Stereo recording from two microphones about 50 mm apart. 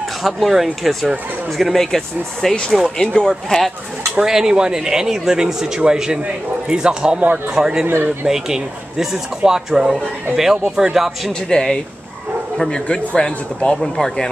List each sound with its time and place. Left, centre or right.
0.2 s speech: centre
4.2 s speech: centre
7.8 s speech: right
8.3 s speech: centre
11.4 s speech: centre
13.7 s speech: centre